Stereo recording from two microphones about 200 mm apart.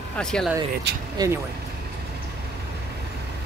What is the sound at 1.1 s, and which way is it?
Speech, 15° right (ahead or behind).